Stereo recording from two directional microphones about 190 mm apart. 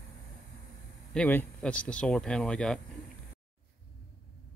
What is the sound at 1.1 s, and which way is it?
Speech, 10° left (ahead or behind).